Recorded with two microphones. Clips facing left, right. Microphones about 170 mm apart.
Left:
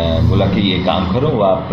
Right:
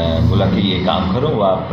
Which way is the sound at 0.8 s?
15° left (ahead or behind).